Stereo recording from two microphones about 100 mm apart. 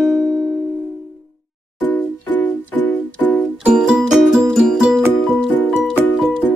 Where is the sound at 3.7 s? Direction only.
5° right (ahead or behind).